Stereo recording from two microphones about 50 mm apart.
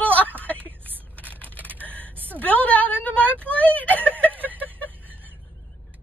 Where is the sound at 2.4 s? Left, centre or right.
Left.